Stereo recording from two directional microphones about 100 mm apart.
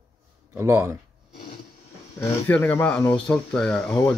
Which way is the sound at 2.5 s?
25° left (ahead or behind).